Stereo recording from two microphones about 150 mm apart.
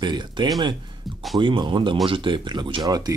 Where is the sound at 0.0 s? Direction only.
30° right (ahead or behind).